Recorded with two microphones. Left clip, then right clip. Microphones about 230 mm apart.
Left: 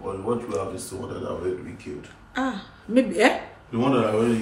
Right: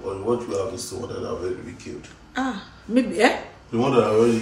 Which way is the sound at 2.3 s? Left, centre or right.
Centre.